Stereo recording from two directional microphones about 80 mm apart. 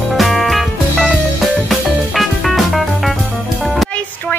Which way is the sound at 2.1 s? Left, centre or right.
Centre.